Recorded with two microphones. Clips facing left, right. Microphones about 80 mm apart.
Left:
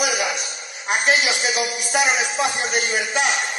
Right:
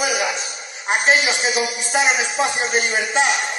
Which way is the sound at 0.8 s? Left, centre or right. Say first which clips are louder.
Right 2 dB; right.